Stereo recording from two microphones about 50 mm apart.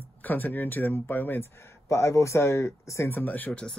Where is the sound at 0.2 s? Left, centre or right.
Left.